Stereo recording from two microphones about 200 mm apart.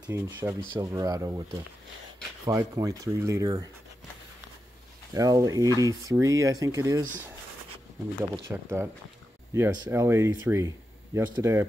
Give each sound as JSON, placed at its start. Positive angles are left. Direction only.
{"t": 0.0, "sound": "speech", "side_deg": -10}
{"t": 2.4, "sound": "speech", "side_deg": -15}
{"t": 5.1, "sound": "speech", "side_deg": -15}
{"t": 8.5, "sound": "speech", "side_deg": -15}